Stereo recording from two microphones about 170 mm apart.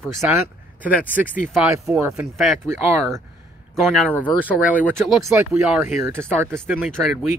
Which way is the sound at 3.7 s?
Centre (ahead or behind).